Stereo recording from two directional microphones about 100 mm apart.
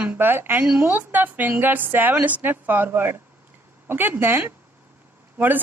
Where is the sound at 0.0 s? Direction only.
20° right (ahead or behind).